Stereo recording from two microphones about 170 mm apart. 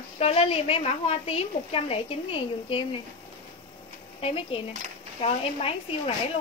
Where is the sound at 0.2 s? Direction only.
35° left (ahead or behind).